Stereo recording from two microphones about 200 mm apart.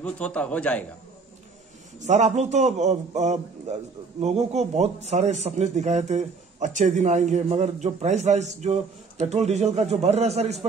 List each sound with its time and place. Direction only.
0.0 s a man's voice: 5° left (ahead or behind)
2.0 s a man's voice: 35° right (ahead or behind)